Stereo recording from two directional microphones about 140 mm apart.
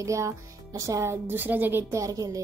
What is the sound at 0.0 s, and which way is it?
A woman's voice, 20° right (ahead or behind).